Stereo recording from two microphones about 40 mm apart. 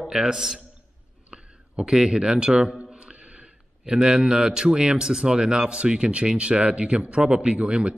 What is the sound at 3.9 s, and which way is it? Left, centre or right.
A man's voice, centre.